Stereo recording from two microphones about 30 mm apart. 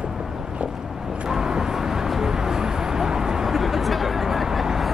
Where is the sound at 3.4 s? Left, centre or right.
Centre.